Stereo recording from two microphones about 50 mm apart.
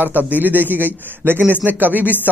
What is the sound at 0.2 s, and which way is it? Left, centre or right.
Speech, right.